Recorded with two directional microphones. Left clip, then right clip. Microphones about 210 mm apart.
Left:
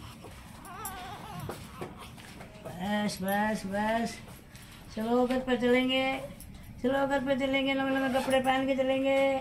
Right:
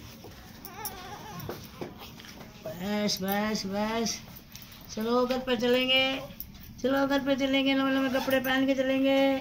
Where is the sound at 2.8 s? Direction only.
15° left (ahead or behind).